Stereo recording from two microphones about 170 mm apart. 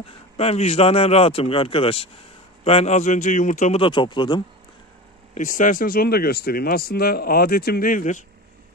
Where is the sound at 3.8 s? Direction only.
25° left (ahead or behind).